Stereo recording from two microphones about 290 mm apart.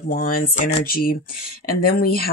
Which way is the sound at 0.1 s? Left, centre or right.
Left.